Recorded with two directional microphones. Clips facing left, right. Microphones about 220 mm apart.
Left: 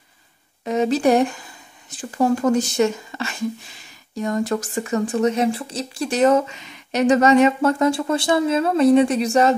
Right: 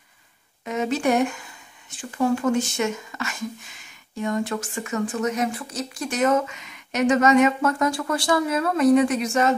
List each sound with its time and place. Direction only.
0.7 s speech: 35° left (ahead or behind)